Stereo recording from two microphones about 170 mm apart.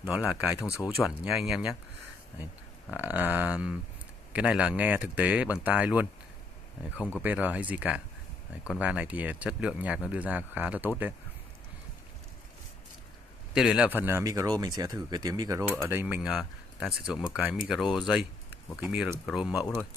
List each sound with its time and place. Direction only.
0.2 s speech: 5° right (ahead or behind)
2.9 s speech: 10° right (ahead or behind)
7.2 s speech: 10° right (ahead or behind)
13.5 s speech: 5° right (ahead or behind)